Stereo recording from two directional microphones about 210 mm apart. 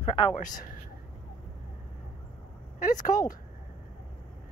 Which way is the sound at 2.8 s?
40° left (ahead or behind).